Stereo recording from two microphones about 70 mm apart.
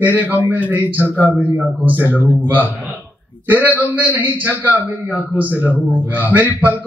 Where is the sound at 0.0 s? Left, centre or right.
Right.